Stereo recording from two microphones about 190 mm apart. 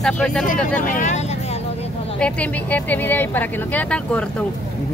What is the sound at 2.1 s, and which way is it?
A woman's voice, 5° left (ahead or behind).